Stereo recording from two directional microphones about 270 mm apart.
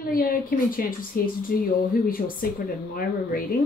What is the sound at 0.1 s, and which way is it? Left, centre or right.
A woman's voice, left.